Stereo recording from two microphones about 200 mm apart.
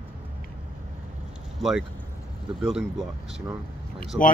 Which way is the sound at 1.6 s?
Centre (ahead or behind).